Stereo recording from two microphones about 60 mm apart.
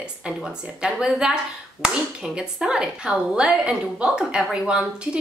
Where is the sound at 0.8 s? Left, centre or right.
Centre.